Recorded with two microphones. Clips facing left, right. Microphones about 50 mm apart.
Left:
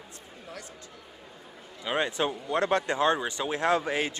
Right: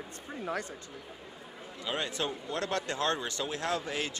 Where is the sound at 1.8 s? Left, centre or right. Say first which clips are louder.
Left 6 dB; left.